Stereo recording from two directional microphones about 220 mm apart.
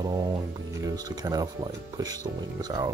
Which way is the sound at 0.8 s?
15° right (ahead or behind).